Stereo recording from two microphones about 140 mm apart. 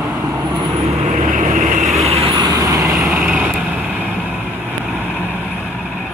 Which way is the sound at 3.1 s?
5° right (ahead or behind).